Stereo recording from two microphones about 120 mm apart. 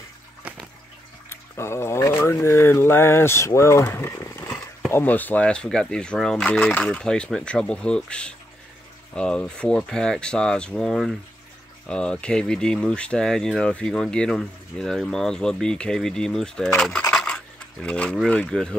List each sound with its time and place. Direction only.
1.3 s a sound: 20° left (ahead or behind)
6.7 s speech: 10° left (ahead or behind)
17.1 s scratch: 5° left (ahead or behind)
17.8 s speech: 10° left (ahead or behind)